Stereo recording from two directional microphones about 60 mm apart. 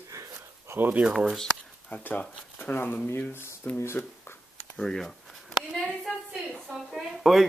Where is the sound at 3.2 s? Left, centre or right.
Left.